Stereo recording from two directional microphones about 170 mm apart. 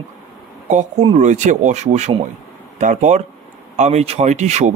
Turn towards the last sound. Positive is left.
turn(degrees=-40)  # may be behind; listen again after turning